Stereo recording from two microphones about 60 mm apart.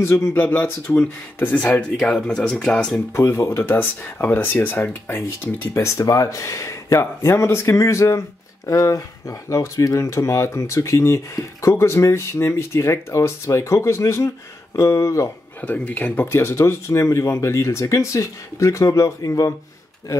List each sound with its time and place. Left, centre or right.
0.0 s speech: left
2.6 s speech: centre
3.1 s speech: left
5.7 s speech: left
15.6 s speech: left
16.3 s speech: left